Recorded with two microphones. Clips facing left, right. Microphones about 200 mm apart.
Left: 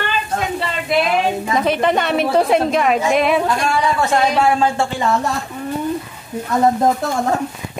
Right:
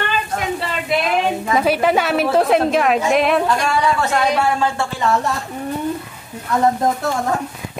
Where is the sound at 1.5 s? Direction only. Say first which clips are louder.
Right 2 dB; 5° right (ahead or behind).